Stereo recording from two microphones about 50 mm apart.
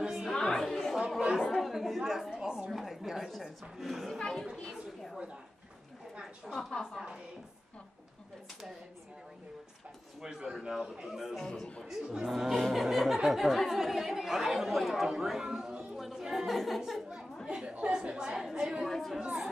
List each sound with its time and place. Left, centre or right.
0.0 s chatter: centre
0.3 s chatter: centre
2.0 s speech: centre
2.3 s a sound: centre
2.7 s a sound: centre
3.4 s speech: centre
4.2 s speech: centre
6.4 s speech: centre
10.2 s a man's voice: centre
11.3 s a sound: centre
11.8 s speech: centre
16.0 s chatter: centre
17.5 s a sound: centre
18.9 s chatter: centre